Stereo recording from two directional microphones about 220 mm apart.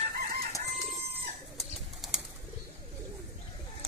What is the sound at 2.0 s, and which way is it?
Bird, centre (ahead or behind).